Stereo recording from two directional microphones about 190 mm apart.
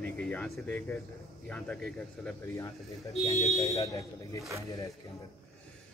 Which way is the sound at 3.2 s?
35° left (ahead or behind).